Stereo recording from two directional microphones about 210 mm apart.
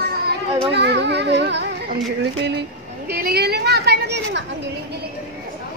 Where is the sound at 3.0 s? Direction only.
50° right (ahead or behind).